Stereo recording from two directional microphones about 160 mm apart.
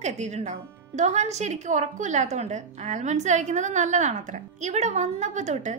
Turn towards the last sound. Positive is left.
turn(degrees=-45)  # may be behind; listen again after turning